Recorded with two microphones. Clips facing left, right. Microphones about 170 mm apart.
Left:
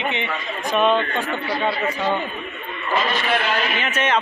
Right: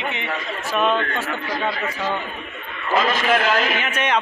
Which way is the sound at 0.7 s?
5° right (ahead or behind).